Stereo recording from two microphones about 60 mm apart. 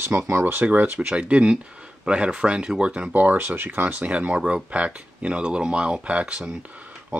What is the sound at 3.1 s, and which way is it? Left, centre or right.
Speech, right.